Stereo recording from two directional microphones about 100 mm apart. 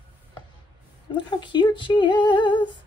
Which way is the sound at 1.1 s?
50° left (ahead or behind).